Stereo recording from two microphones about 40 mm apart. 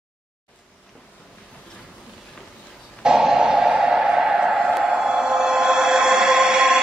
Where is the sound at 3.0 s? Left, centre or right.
Centre.